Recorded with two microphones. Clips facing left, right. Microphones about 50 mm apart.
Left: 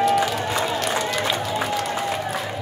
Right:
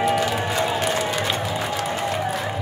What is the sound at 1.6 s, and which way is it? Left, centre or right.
Music, centre.